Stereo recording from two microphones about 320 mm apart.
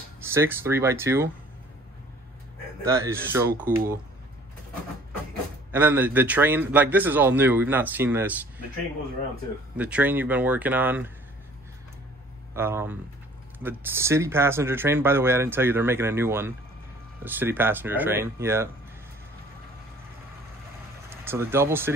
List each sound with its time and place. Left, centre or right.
0.2 s speech: centre
2.8 s speech: centre
5.7 s a man's voice: centre
9.8 s a man's voice: centre
12.5 s speech: centre
21.2 s speech: centre